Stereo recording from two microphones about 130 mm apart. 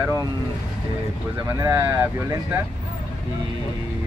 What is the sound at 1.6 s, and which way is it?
Speech, 20° right (ahead or behind).